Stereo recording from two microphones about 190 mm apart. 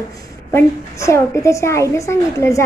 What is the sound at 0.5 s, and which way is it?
A woman's voice, 15° left (ahead or behind).